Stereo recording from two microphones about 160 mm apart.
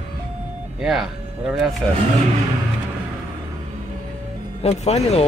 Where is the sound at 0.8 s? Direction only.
Centre (ahead or behind).